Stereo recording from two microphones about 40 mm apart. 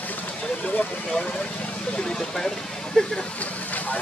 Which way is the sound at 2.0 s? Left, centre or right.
Centre.